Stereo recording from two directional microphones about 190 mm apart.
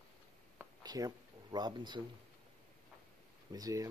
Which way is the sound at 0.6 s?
20° right (ahead or behind).